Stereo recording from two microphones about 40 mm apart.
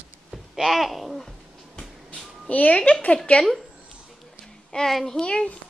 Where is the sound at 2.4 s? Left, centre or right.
Left.